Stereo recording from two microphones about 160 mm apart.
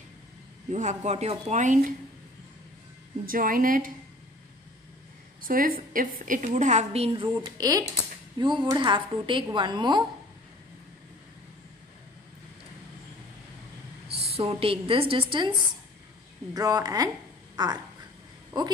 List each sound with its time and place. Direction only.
0.7 s speech: 50° right (ahead or behind)
3.3 s a woman's voice: 60° right (ahead or behind)
5.4 s a woman's voice: 60° right (ahead or behind); by 7.2 s 40° right (ahead or behind)
7.5 s a woman's voice: 25° right (ahead or behind)
14.0 s a woman's voice: 40° right (ahead or behind)
16.5 s a woman's voice: 25° right (ahead or behind)